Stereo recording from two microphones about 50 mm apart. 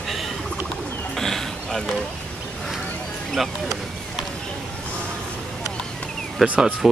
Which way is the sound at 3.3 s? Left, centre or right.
Centre.